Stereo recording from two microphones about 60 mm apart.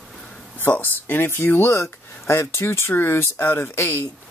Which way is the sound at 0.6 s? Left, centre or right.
Left.